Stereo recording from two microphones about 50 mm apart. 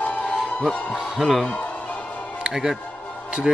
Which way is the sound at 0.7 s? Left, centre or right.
Centre.